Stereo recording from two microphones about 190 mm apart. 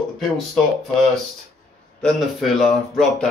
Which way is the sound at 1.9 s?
Centre (ahead or behind).